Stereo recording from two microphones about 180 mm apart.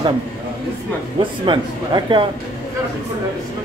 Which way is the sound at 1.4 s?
25° right (ahead or behind).